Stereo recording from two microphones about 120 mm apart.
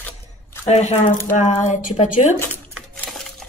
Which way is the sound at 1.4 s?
90° left.